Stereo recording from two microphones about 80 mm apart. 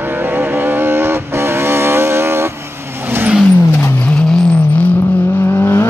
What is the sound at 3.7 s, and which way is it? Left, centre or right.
Vehicle, left.